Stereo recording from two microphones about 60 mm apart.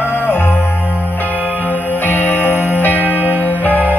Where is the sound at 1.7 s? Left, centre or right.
Left.